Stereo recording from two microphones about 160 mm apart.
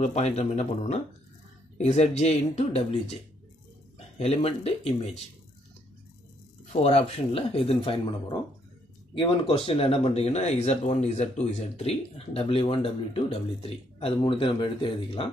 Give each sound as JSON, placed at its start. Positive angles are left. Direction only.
{"t": 0.0, "sound": "speech", "side_deg": 45}
{"t": 4.2, "sound": "speech", "side_deg": 40}
{"t": 6.6, "sound": "speech", "side_deg": 45}
{"t": 9.1, "sound": "speech", "side_deg": 35}